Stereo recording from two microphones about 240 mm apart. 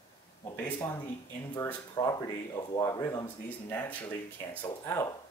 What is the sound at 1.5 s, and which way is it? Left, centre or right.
Speech, centre.